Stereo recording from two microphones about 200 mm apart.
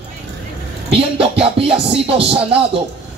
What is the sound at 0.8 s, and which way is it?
Music, 30° right (ahead or behind).